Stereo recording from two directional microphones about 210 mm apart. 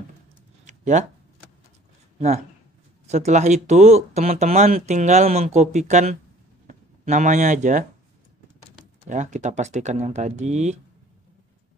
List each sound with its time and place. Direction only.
0.7 s a sound: 35° right (ahead or behind)
2.1 s speech: 30° right (ahead or behind)
9.1 s speech: 35° right (ahead or behind)